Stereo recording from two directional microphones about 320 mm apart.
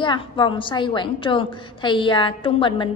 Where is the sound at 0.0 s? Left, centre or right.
Centre.